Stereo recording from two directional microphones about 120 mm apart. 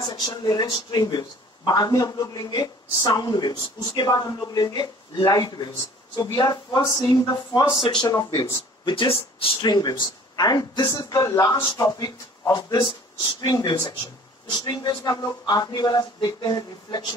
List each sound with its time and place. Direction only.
0.0 s speech: 40° left (ahead or behind)
8.1 s speech: 30° left (ahead or behind); by 9.5 s 50° left (ahead or behind)
9.6 s speech: 35° left (ahead or behind)